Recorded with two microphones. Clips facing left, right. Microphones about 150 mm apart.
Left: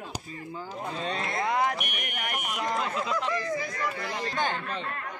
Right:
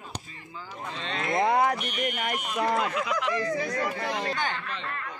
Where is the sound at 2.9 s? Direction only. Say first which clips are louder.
Right 1 dB; 30° left (ahead or behind).